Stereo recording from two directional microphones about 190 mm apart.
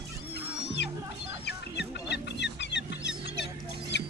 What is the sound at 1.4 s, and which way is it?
Chicken, 60° left (ahead or behind).